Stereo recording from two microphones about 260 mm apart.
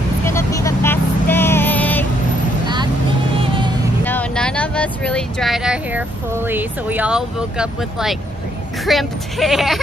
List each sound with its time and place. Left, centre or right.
0.2 s vehicle: centre
3.3 s music: centre
4.0 s speech: centre